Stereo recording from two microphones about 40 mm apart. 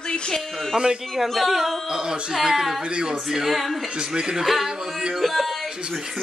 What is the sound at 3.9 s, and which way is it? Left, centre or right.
Speech, centre.